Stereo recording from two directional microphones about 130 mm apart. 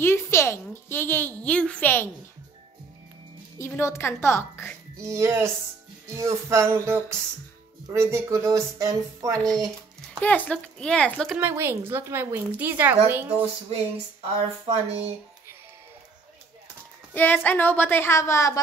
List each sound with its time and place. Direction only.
0.0 s a woman's voice: 20° left (ahead or behind)
3.5 s a woman's voice: 20° left (ahead or behind)
5.0 s speech: 20° right (ahead or behind)
10.2 s a woman's voice: 10° left (ahead or behind)
11.3 s speech: 15° right (ahead or behind)
14.7 s speech: 50° right (ahead or behind)
17.1 s a woman's voice: 15° left (ahead or behind)